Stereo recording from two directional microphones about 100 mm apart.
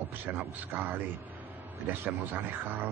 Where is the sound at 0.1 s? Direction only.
20° right (ahead or behind).